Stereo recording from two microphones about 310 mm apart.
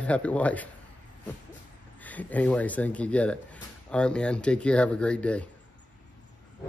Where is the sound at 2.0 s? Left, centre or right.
Centre.